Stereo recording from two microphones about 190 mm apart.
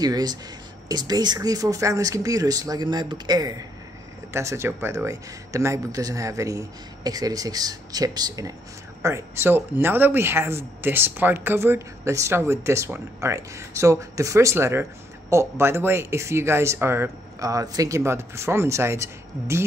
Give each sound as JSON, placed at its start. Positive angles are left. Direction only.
{"t": 0.0, "sound": "speech", "side_deg": -20}